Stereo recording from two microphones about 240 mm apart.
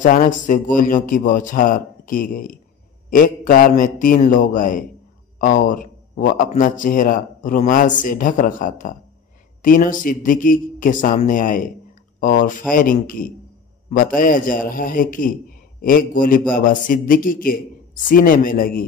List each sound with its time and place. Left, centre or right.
0.0 s a man's voice: left